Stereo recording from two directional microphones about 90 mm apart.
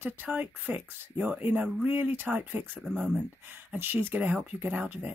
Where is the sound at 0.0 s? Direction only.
20° right (ahead or behind).